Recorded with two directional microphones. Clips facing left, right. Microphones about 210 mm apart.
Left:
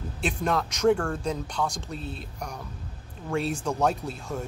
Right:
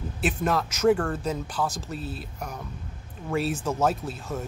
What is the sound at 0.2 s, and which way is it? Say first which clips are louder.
Speech: right 1 dB; 5° right (ahead or behind).